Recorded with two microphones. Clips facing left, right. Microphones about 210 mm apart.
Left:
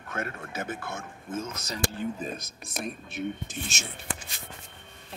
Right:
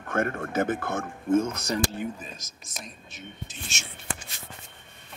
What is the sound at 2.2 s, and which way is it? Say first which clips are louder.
Speech: left 8 dB; 60° left (ahead or behind).